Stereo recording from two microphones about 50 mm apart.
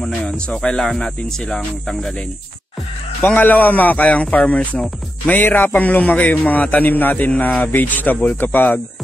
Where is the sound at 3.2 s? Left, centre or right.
Left.